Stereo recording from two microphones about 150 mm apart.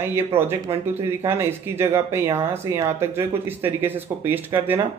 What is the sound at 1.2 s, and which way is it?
Speech, 15° right (ahead or behind).